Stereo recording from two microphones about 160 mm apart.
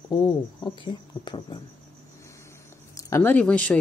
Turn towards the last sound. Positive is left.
turn(degrees=5)  # may be behind; listen again after turning